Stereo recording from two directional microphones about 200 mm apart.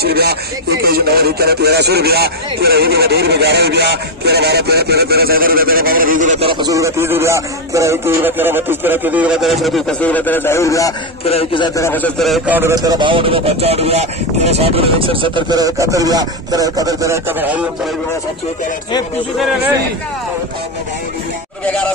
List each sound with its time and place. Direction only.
0.0 s a sound: 50° right (ahead or behind); by 6.5 s 35° right (ahead or behind)
6.5 s speech: 20° right (ahead or behind); by 10.9 s 15° left (ahead or behind)
11.2 s a man's voice: 25° left (ahead or behind); by 12.5 s centre (ahead or behind)
12.5 s speech: 15° right (ahead or behind)